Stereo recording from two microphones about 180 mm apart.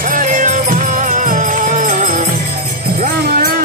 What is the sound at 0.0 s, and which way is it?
Music, 50° right (ahead or behind).